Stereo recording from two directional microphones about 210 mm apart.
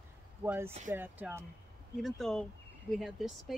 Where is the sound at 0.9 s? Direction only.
10° right (ahead or behind).